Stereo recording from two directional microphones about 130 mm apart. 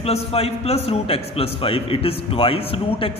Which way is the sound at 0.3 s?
50° left (ahead or behind).